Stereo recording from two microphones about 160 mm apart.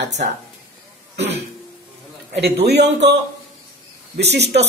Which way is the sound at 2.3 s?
90° right.